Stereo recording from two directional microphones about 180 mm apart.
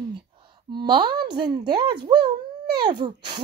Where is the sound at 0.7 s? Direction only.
25° right (ahead or behind).